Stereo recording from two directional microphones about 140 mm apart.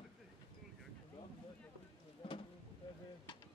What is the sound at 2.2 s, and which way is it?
Speech, 40° left (ahead or behind).